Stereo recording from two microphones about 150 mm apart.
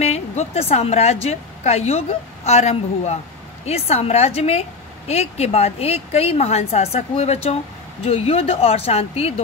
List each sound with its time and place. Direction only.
0.0 s a woman's voice: 45° left (ahead or behind)